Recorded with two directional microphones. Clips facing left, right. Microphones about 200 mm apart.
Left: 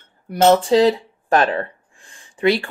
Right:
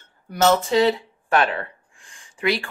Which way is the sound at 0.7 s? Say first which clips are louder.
Left 4 dB; 35° left (ahead or behind).